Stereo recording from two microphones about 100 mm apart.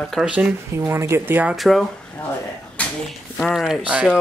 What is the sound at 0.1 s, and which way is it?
Speech, 10° right (ahead or behind).